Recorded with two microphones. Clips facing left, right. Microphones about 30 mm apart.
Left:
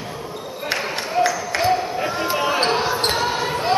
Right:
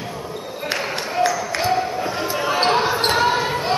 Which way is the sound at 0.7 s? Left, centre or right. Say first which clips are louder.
Even; centre.